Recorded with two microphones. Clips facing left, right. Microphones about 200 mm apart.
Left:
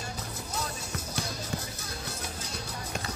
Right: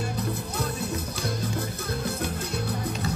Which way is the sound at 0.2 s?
60° right (ahead or behind).